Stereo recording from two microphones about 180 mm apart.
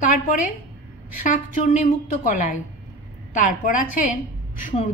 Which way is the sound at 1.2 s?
45° left (ahead or behind).